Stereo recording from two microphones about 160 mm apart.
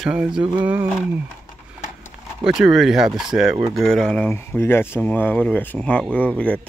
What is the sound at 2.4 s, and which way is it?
Speech, 5° right (ahead or behind).